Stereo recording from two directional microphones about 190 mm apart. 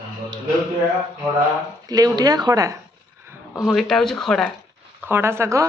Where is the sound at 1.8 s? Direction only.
20° right (ahead or behind).